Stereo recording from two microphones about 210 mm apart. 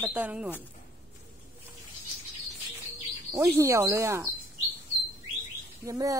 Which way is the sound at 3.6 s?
15° right (ahead or behind).